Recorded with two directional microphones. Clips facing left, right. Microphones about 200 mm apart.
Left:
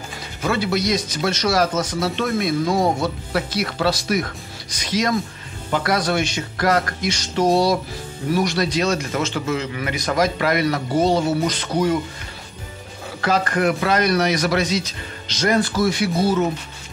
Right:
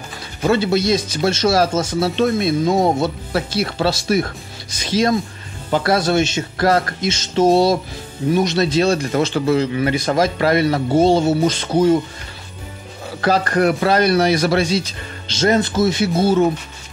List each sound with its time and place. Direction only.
0.4 s speech: 25° right (ahead or behind)
13.2 s speech: 35° right (ahead or behind)